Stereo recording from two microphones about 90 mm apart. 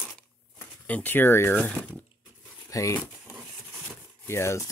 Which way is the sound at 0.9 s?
20° left (ahead or behind).